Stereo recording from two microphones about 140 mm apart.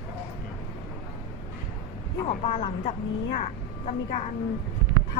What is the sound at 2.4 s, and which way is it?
A woman's voice, 50° left (ahead or behind).